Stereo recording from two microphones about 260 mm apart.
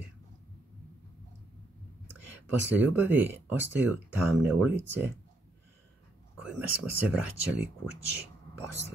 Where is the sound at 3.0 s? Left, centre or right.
Centre.